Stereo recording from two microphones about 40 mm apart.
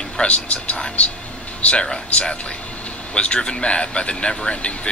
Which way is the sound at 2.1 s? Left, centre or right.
Left.